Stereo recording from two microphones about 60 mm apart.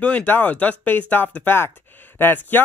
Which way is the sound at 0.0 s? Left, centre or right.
Left.